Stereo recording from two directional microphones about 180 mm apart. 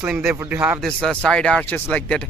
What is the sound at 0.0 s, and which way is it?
Speech, 10° right (ahead or behind).